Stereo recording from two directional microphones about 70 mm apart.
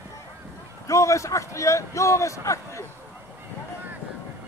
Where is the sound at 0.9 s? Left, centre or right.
Left.